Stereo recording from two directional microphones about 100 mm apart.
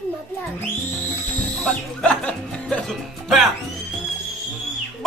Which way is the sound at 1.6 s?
10° left (ahead or behind).